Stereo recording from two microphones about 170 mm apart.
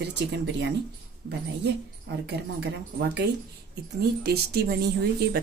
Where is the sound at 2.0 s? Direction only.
80° right.